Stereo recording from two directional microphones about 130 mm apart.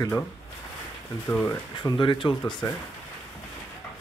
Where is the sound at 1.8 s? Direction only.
35° left (ahead or behind).